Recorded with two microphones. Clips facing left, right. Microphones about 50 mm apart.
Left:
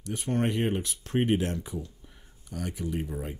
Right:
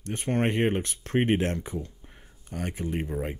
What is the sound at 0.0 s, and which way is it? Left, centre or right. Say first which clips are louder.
Speech: right 2 dB; right.